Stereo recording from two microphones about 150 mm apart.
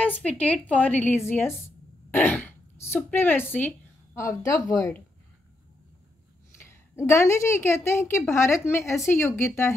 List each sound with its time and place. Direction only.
0.0 s a woman's voice: 10° left (ahead or behind)
6.6 s a woman's voice: 15° left (ahead or behind)